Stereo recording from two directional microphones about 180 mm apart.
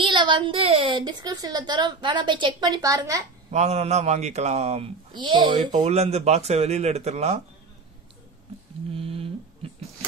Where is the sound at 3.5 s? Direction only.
40° right (ahead or behind).